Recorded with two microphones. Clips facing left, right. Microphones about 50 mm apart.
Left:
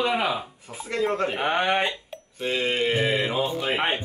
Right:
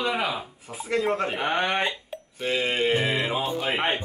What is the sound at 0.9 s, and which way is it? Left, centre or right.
Speech, centre.